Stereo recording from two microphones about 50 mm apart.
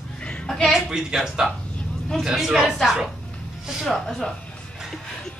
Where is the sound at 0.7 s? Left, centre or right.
Centre.